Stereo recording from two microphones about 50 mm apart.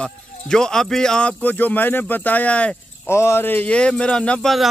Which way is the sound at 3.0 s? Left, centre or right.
Left.